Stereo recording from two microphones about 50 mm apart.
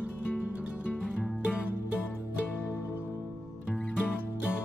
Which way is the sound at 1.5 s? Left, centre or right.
Left.